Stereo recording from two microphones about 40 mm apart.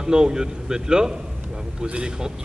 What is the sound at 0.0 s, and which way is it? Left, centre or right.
A man's voice, centre.